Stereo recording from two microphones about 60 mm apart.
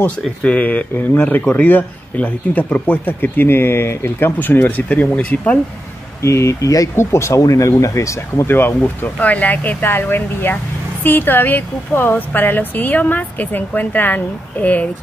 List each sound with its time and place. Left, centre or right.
0.4 s speech: left
4.4 s speech: left
6.2 s speech: left
7.0 s speech: left
8.5 s speech: left